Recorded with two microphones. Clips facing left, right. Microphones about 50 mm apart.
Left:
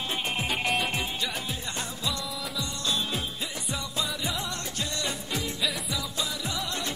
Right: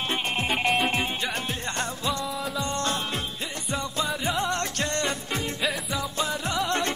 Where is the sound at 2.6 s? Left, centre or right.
Right.